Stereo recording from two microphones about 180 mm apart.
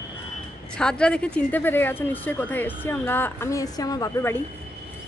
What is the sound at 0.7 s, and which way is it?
Speech, 5° left (ahead or behind).